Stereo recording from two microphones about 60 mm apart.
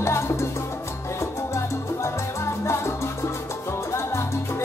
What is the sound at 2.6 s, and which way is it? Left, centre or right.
Salsa music, left.